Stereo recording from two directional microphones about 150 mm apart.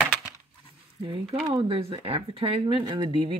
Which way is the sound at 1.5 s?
40° right (ahead or behind).